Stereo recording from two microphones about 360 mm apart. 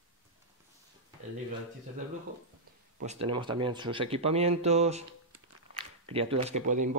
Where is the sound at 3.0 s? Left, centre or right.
Centre.